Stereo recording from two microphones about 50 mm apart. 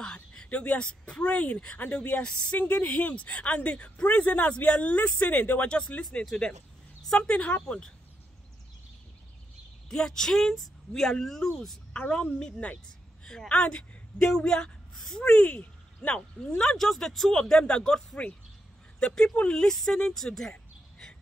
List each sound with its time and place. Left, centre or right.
0.0 s speech: centre
7.2 s speech: left
9.8 s speech: centre
12.0 s speech: left
13.2 s a sound: centre
13.5 s speech: left